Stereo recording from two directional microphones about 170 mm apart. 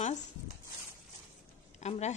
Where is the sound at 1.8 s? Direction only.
40° left (ahead or behind).